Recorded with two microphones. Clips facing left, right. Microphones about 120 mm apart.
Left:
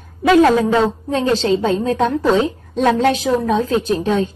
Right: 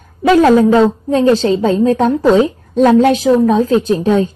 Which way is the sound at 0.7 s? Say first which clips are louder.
Right 6 dB; 40° right (ahead or behind).